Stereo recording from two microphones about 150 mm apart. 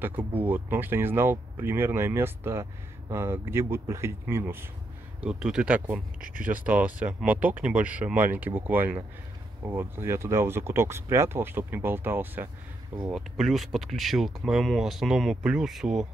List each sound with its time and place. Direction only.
0.4 s speech: 10° right (ahead or behind)
5.2 s speech: 5° right (ahead or behind)
6.2 s speech: 65° right (ahead or behind)
6.6 s speech: 10° right (ahead or behind)
13.0 s speech: 5° right (ahead or behind)